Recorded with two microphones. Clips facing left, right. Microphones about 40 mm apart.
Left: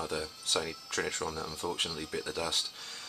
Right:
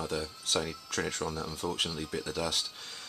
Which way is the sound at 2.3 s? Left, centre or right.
Centre.